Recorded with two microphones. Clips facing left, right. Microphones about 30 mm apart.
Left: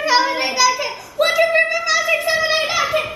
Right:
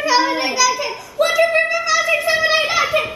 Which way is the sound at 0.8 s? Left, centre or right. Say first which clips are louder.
Even; centre.